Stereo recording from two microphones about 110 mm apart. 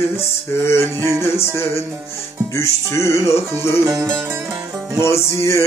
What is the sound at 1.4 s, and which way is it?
Male singing, 25° left (ahead or behind).